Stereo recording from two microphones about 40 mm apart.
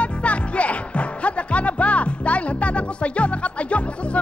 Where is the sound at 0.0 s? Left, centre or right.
Left.